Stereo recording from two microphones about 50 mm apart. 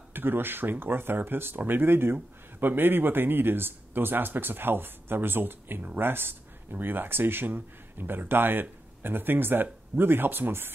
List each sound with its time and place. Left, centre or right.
0.1 s speech: right